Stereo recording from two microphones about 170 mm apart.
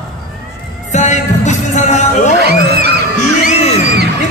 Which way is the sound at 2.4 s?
70° right (ahead or behind).